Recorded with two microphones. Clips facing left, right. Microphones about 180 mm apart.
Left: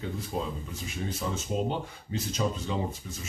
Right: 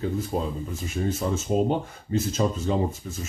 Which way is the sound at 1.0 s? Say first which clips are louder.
Right 7 dB; 45° right (ahead or behind).